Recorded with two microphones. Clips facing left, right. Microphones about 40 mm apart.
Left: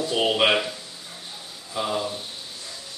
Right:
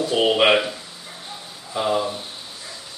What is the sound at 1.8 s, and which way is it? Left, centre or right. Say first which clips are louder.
Speech: right 5 dB; centre.